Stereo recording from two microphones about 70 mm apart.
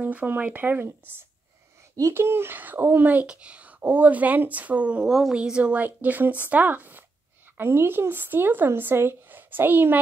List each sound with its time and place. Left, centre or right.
0.0 s speech: right
2.1 s speech: right
5.0 s speech: centre; by 9.9 s right